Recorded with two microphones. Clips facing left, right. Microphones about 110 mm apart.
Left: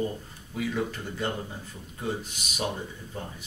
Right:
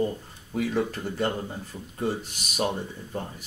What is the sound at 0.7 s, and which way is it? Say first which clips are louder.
Speech: right 4 dB; 40° right (ahead or behind).